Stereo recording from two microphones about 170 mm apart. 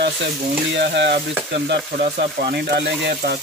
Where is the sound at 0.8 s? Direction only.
85° right.